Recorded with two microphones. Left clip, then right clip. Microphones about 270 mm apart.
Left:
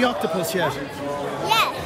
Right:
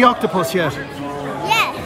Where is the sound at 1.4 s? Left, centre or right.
Centre.